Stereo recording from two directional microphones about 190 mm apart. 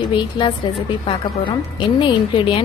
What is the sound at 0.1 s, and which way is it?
A woman's voice, 25° left (ahead or behind).